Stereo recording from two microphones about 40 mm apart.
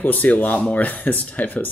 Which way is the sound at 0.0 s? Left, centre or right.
Left.